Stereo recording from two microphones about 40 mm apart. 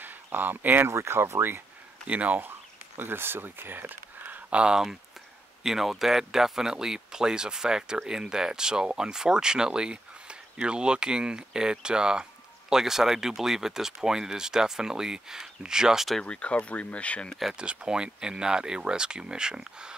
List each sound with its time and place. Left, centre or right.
0.0 s speech: right
0.8 s speech: right
2.0 s speech: right
3.0 s speech: right
4.5 s speech: right
5.6 s speech: centre
16.3 s speech: left
17.6 s speech: right